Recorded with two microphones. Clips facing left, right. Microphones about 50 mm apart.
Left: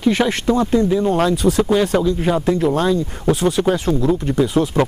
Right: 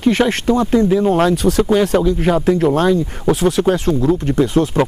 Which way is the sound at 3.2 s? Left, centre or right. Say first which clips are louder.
Right 2 dB; right.